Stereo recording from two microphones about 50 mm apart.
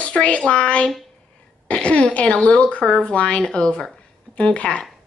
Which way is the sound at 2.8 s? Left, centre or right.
Centre.